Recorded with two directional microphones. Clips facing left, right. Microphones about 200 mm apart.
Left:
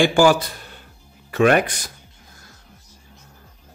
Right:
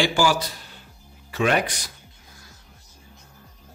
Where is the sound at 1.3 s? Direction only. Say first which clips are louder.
Left 6 dB; 55° left (ahead or behind).